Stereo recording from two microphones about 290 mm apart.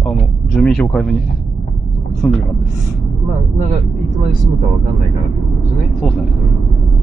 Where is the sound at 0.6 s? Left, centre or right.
Centre.